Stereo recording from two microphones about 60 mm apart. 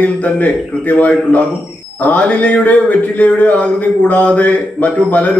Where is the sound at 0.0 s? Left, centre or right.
Left.